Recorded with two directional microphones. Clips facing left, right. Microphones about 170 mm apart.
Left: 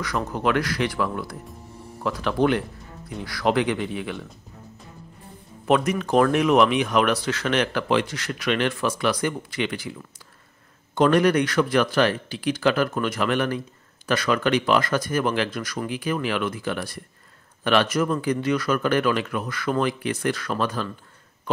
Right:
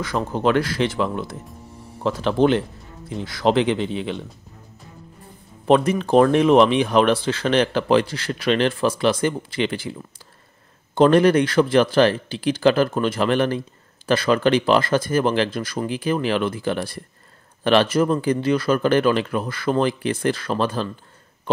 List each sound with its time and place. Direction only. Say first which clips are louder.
0.0 s speech: right 4 dB; 25° right (ahead or behind)
5.7 s speech: right 4 dB; 30° right (ahead or behind)
11.0 s speech: right 4 dB; 30° right (ahead or behind)